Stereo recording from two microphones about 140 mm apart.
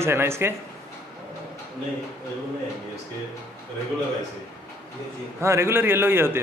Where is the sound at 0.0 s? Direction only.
15° right (ahead or behind).